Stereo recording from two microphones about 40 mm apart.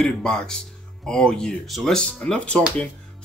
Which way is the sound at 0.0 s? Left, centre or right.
Centre.